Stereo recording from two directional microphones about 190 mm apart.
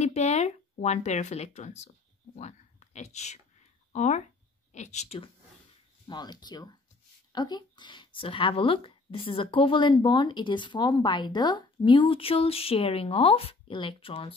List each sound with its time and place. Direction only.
0.0 s speech: 35° left (ahead or behind)
2.3 s whispering: 35° left (ahead or behind)
3.9 s a woman's voice: 35° left (ahead or behind)
6.0 s speech: 20° left (ahead or behind)